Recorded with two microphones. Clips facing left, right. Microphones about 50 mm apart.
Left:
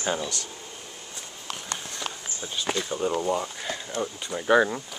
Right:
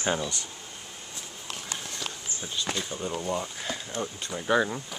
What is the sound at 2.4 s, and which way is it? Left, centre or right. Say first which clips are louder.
Speech: left 3 dB; centre.